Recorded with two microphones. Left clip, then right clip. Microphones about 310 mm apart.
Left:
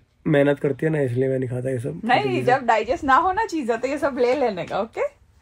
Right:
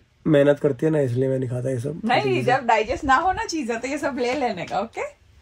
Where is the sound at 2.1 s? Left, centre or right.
Left.